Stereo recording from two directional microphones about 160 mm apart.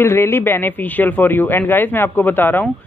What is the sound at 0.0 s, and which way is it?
Speech, 15° left (ahead or behind).